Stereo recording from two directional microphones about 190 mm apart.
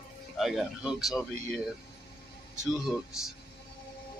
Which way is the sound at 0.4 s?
Centre (ahead or behind).